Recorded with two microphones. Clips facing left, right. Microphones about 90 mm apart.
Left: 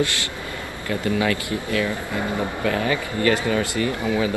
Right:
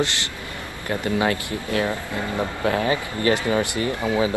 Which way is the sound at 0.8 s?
30° right (ahead or behind).